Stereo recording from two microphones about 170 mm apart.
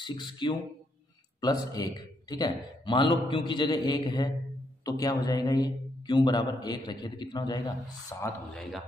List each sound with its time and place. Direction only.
0.0 s a man's voice: 25° left (ahead or behind)